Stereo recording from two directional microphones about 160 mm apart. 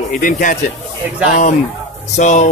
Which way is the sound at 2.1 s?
50° left (ahead or behind).